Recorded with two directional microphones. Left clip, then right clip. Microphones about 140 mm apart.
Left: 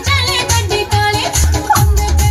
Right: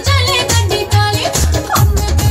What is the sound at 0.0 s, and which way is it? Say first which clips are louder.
Music: right 1 dB; 25° right (ahead or behind).